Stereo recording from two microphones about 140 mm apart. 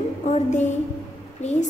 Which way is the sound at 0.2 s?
60° left (ahead or behind).